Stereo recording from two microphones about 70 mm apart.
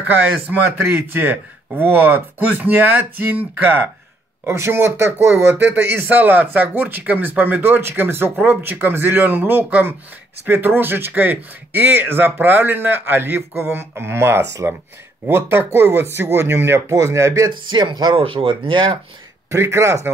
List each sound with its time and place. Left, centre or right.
0.0 s speech: right
4.5 s speech: right
17.6 s speech: right
19.5 s speech: right